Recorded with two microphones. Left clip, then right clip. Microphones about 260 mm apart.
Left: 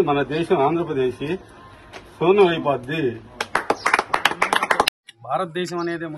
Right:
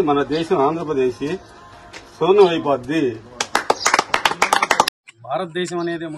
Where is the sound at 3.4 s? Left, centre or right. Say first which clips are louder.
Right 3 dB; right.